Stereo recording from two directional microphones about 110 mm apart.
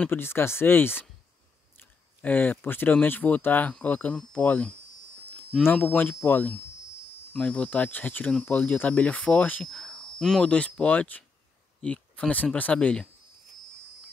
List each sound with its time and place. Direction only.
0.0 s speech: 20° left (ahead or behind)